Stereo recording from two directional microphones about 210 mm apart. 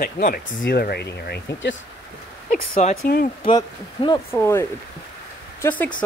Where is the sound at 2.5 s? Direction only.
35° left (ahead or behind).